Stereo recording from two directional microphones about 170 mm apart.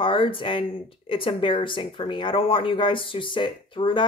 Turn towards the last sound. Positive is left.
turn(degrees=30)  # may be behind; listen again after turning